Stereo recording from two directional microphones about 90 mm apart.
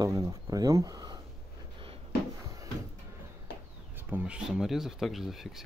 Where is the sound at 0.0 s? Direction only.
45° right (ahead or behind).